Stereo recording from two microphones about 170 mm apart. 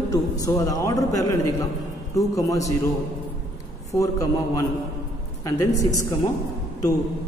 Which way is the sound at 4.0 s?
20° left (ahead or behind).